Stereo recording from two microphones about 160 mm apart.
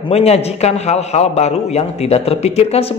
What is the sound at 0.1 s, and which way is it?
A man's voice, 40° left (ahead or behind).